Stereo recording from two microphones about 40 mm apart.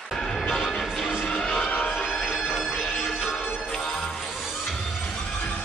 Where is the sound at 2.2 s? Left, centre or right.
Centre.